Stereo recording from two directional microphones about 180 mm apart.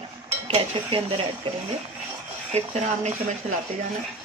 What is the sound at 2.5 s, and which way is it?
A woman's voice, 40° right (ahead or behind).